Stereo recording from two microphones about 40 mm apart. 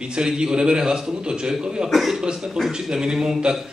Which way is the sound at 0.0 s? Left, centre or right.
Right.